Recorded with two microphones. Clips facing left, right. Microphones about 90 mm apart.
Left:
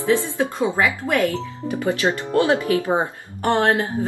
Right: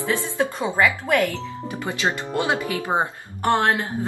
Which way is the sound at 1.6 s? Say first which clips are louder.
Left 5 dB; 20° right (ahead or behind).